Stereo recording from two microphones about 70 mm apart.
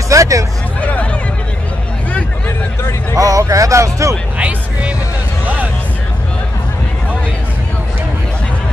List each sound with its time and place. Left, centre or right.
0.1 s speech: right
0.7 s hubbub: left
3.2 s speech: right
4.4 s music: centre